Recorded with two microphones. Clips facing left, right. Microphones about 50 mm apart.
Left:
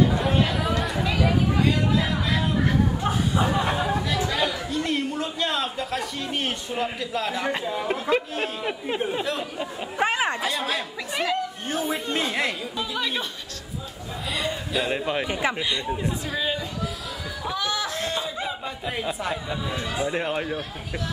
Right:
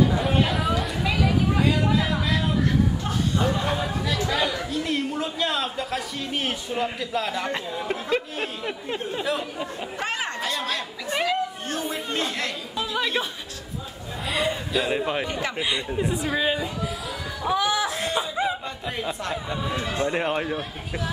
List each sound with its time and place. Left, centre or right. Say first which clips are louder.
0.0 s chatter: even; centre
9.2 s speech: right 1 dB; centre
9.9 s a sound: left 6 dB; centre
10.4 s a sound: left 1 dB; centre
11.2 s chatter: right 1 dB; centre
12.7 s speech: right 2 dB; centre
14.3 s a man's voice: right 3 dB; centre
15.2 s speech: left 3 dB; centre
15.9 s speech: right 2 dB; centre
16.3 s a sound: right 3 dB; centre
18.2 s laughter: right 4 dB; centre
18.9 s speech: left 1 dB; centre